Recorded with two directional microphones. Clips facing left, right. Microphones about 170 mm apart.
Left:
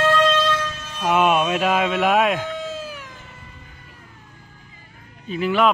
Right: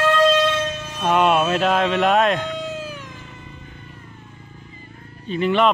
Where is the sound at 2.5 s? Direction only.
15° right (ahead or behind).